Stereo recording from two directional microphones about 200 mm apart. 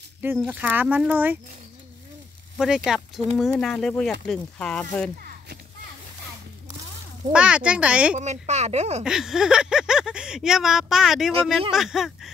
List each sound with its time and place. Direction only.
0.4 s speech: 10° right (ahead or behind)
2.5 s speech: centre (ahead or behind)
7.3 s speech: 5° right (ahead or behind)
8.2 s speech: 35° right (ahead or behind)
9.0 s speech: 5° right (ahead or behind)